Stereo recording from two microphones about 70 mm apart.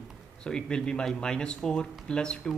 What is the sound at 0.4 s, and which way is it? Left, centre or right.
Speech, centre.